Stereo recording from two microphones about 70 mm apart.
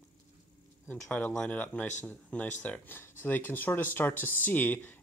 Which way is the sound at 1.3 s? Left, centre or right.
Centre.